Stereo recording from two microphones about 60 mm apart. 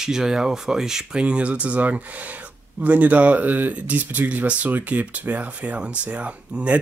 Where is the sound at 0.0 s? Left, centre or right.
Centre.